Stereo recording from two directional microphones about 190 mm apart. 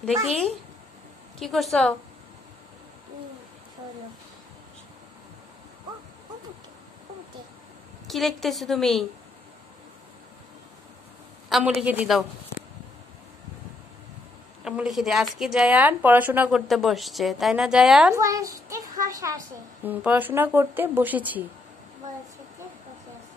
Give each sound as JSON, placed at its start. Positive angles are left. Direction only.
{"t": 1.4, "sound": "speech", "side_deg": 0}
{"t": 8.1, "sound": "speech", "side_deg": 0}
{"t": 11.4, "sound": "a sound", "side_deg": 0}
{"t": 11.8, "sound": "a child's voice", "side_deg": -5}
{"t": 14.6, "sound": "speech", "side_deg": 0}
{"t": 18.1, "sound": "a child's voice", "side_deg": -15}